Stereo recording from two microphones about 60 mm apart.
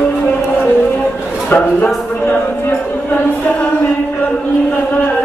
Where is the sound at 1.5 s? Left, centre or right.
Left.